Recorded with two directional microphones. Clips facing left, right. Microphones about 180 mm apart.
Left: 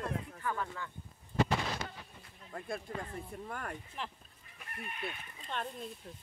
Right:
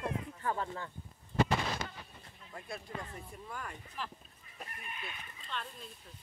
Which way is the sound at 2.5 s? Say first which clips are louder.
Left 5 dB; 45° left (ahead or behind).